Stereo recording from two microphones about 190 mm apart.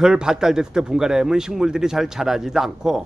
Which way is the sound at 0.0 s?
5° right (ahead or behind).